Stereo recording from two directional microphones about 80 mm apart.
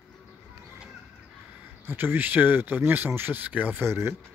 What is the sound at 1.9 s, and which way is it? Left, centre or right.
Speech, right.